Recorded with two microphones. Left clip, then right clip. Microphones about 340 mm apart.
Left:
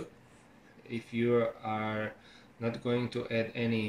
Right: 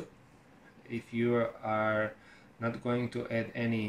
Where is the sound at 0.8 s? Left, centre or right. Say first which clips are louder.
Left 1 dB; right.